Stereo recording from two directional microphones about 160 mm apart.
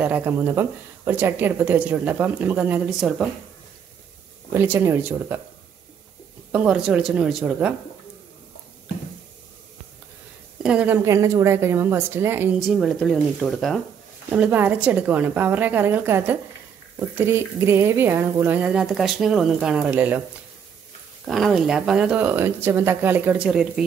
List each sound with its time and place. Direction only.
0.0 s speech: 10° right (ahead or behind)
4.5 s speech: 10° right (ahead or behind)
6.5 s speech: 5° right (ahead or behind)
10.6 s speech: 5° right (ahead or behind)
11.1 s speech: 20° right (ahead or behind)
12.6 s speech: centre (ahead or behind)
14.3 s speech: 10° right (ahead or behind)
21.3 s speech: centre (ahead or behind)